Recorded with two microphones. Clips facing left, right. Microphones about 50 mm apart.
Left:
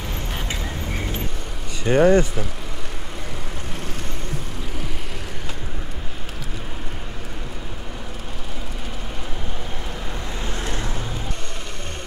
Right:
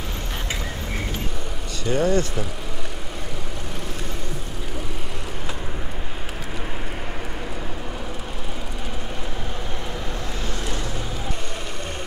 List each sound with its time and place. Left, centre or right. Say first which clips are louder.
1.9 s speech: left 6 dB; left
10.4 s vehicle: left 3 dB; left